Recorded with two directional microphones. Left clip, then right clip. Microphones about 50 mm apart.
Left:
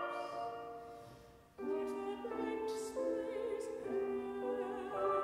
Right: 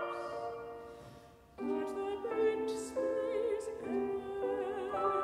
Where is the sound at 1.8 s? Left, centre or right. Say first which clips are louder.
Right 3 dB; right.